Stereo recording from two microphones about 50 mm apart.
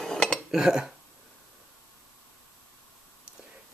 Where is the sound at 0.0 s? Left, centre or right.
Centre.